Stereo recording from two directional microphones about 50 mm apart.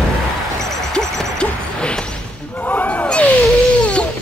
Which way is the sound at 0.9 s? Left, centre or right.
Centre.